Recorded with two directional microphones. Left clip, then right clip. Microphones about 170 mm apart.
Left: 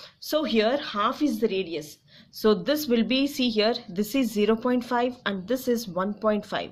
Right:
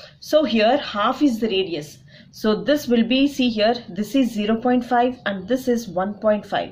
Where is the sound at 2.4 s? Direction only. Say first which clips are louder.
Right 3 dB; 45° left (ahead or behind).